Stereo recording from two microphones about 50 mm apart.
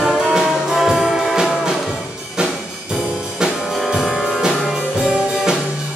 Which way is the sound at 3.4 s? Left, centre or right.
Centre.